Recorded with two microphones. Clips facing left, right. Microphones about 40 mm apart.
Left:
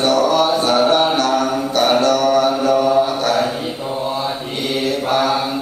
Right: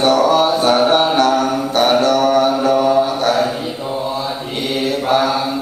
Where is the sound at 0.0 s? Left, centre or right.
Right.